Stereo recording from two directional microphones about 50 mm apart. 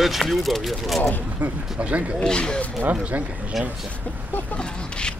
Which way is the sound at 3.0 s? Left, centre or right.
Right.